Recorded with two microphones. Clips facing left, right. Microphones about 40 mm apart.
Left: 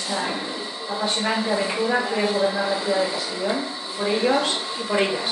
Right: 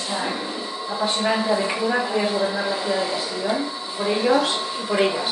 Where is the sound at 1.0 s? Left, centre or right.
Centre.